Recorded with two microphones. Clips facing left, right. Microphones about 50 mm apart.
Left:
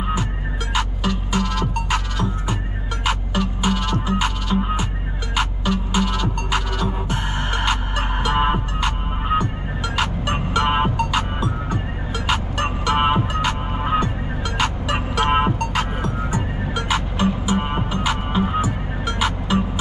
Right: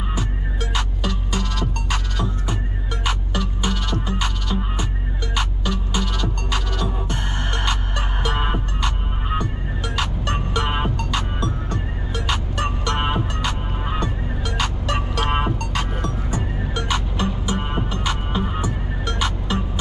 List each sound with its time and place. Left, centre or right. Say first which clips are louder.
0.7 s music: left 5 dB; centre
12.8 s music: left 7 dB; centre
15.6 s music: left 3 dB; centre